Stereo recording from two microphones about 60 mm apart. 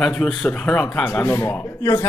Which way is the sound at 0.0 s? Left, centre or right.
Centre.